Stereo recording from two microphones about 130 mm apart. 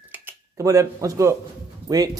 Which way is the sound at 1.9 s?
30° right (ahead or behind).